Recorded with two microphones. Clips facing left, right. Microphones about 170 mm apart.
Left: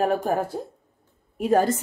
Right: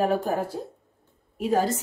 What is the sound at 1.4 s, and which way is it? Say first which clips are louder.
Speech: left 3 dB; 55° left (ahead or behind).